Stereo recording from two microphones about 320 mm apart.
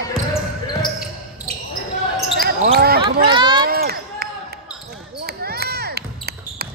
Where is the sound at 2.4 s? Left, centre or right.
Right.